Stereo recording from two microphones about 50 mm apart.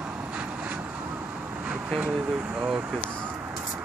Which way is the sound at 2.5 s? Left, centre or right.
Centre.